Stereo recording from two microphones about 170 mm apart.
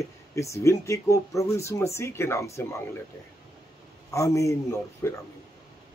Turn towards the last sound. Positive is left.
turn(degrees=15)  # may be behind; listen again after turning